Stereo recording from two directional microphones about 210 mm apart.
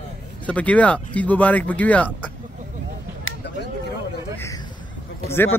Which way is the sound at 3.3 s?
70° left (ahead or behind).